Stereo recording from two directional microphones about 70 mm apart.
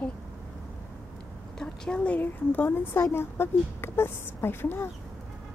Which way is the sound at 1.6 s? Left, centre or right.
Centre.